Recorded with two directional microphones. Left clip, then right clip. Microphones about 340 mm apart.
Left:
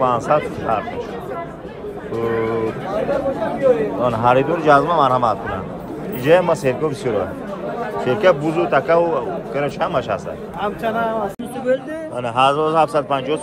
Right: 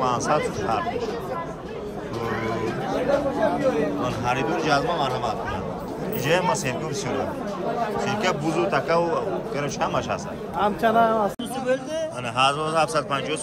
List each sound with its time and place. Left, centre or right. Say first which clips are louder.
0.0 s speech: left 5 dB; centre
4.0 s a man's voice: left 9 dB; centre
10.6 s a man's voice: right 2 dB; right
12.4 s a man's voice: left 6 dB; centre